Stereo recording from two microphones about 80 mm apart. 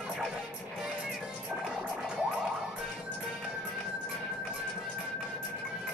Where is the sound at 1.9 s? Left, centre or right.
Centre.